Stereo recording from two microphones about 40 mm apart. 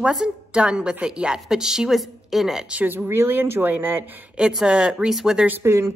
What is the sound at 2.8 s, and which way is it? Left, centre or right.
Speech, right.